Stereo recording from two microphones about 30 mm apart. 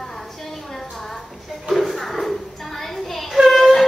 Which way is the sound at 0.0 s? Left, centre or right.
Centre.